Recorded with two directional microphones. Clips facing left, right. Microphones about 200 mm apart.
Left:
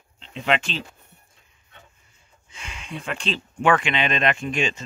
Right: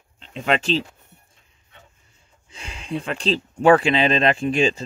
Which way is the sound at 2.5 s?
35° right (ahead or behind).